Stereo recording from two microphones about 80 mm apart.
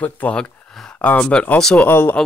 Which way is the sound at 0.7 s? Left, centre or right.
Centre.